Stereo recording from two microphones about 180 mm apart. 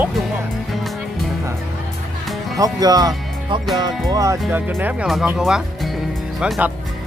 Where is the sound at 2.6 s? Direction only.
20° right (ahead or behind).